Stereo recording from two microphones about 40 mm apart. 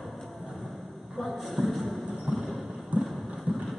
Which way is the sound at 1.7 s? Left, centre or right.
Centre.